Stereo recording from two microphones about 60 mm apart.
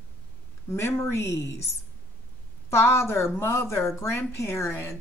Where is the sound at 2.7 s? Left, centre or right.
Left.